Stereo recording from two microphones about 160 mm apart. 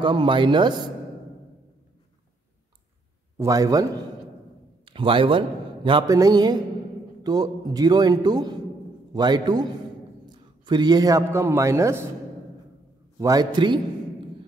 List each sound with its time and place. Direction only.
0.0 s speech: 30° right (ahead or behind)
3.3 s a man's voice: 20° right (ahead or behind)
4.8 s a man's voice: 30° right (ahead or behind)
6.0 s a man's voice: 20° right (ahead or behind)
13.2 s a man's voice: 25° right (ahead or behind)